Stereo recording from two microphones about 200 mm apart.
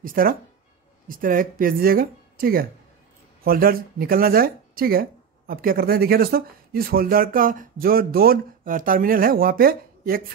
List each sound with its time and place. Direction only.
0.0 s speech: 45° right (ahead or behind)